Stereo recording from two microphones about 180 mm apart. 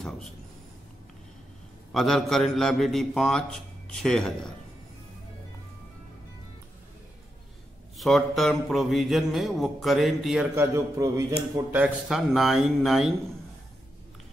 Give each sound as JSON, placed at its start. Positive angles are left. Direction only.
{"t": 1.9, "sound": "speech", "side_deg": 0}
{"t": 8.0, "sound": "speech", "side_deg": 0}
{"t": 10.5, "sound": "speech", "side_deg": -15}